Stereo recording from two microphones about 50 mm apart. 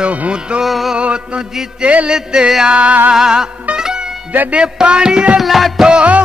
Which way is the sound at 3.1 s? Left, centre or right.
Centre.